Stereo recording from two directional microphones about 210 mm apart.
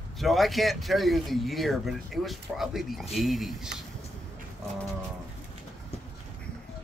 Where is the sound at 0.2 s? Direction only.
Centre (ahead or behind).